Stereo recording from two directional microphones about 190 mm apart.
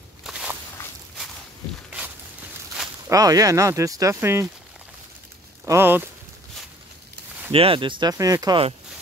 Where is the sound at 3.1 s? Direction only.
20° right (ahead or behind).